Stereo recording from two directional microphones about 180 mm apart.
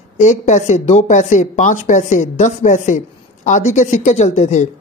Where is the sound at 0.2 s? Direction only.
40° left (ahead or behind).